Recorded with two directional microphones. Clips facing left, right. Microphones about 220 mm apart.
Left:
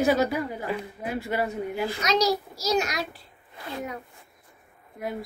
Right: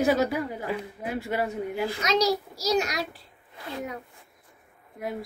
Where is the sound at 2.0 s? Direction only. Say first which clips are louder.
Even; 25° right (ahead or behind).